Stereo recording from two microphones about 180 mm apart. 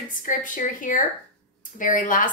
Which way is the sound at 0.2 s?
50° left (ahead or behind).